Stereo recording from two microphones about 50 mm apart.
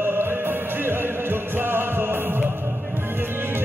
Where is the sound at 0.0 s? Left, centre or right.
Right.